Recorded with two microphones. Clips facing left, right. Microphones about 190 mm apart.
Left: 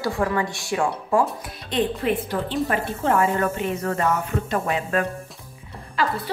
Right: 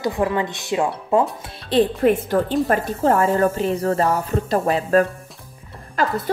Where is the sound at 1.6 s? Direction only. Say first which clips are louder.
Right 6 dB; 40° right (ahead or behind).